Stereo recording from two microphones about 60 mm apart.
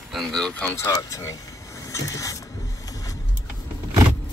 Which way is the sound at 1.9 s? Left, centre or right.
Left.